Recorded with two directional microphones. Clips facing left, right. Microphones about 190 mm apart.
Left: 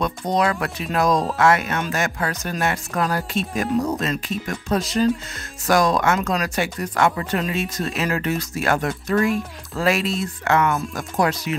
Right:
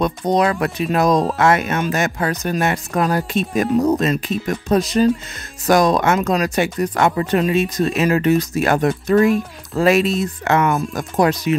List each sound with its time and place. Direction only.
0.0 s speech: 20° right (ahead or behind)